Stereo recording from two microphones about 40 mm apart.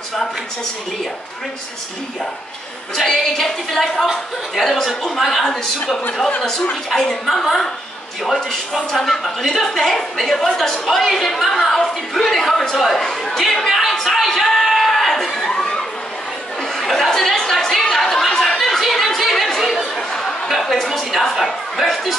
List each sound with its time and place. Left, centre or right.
3.0 s a woman's voice: centre
6.4 s a woman's voice: centre
15.5 s a sound: centre
16.9 s chatter: centre
20.4 s a woman's voice: centre